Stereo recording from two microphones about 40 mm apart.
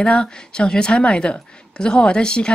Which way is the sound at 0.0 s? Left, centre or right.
Left.